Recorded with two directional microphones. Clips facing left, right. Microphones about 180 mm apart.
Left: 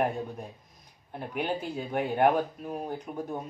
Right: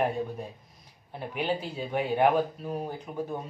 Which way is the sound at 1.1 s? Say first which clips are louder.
Right 1 dB; 5° right (ahead or behind).